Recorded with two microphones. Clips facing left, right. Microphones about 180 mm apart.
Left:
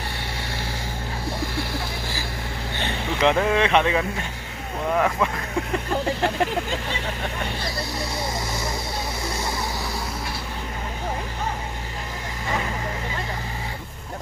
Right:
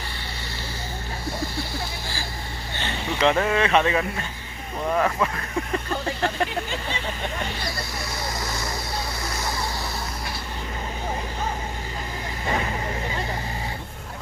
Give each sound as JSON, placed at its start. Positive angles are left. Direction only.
{"t": 3.2, "sound": "speech", "side_deg": 15}